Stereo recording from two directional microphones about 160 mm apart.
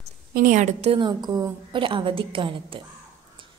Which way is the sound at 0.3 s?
60° right (ahead or behind).